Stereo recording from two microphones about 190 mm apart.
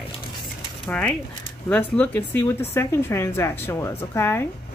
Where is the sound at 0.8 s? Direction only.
5° left (ahead or behind).